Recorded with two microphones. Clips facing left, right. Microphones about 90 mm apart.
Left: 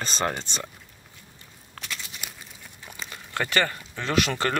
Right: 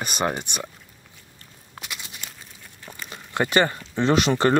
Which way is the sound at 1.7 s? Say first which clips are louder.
Even; 15° right (ahead or behind).